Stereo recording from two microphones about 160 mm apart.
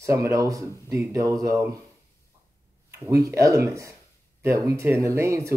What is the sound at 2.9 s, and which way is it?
Speech, 20° right (ahead or behind).